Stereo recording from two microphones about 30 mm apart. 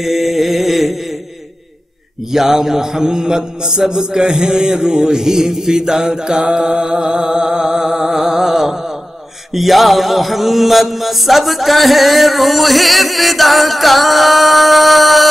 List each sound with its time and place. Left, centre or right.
0.0 s mantra: centre
2.3 s a man's voice: centre
9.5 s mantra: centre